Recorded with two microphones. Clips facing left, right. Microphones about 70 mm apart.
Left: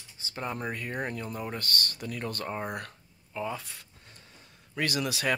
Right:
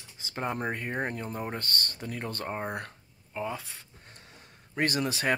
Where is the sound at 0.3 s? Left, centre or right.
Right; by 3.8 s centre.